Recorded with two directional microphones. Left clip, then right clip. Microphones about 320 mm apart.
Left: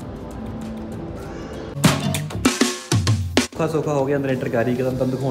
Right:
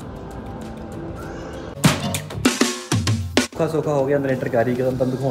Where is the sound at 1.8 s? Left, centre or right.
Centre.